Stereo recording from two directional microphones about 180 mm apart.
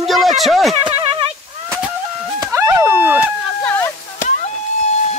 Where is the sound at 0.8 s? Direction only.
30° right (ahead or behind).